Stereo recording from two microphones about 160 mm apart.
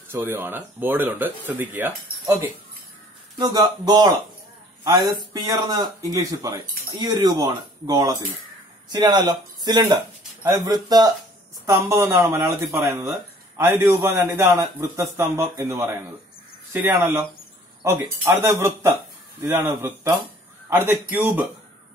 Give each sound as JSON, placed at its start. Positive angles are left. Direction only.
{"t": 0.1, "sound": "speech", "side_deg": -15}
{"t": 3.3, "sound": "speech", "side_deg": -25}